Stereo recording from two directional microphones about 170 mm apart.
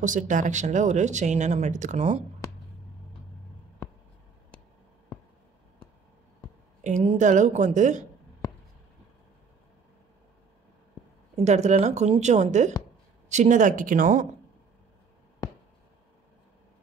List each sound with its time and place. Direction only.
0.0 s speech: 50° right (ahead or behind)
6.8 s speech: 45° right (ahead or behind)
11.3 s speech: 40° right (ahead or behind)